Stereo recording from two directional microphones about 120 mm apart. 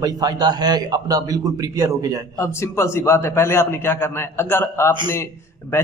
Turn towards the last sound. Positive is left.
turn(degrees=20)  # may be behind; listen again after turning